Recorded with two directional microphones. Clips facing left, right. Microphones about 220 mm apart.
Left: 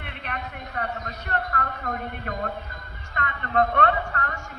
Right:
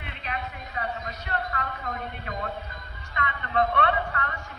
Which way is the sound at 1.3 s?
50° left (ahead or behind).